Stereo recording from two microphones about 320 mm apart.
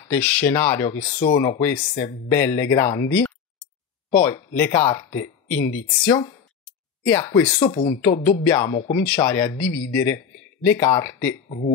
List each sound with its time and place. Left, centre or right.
0.1 s speech: centre
6.0 s a sound: centre
7.6 s speech: centre
8.7 s speech: centre
9.0 s speech: centre
11.4 s speech: left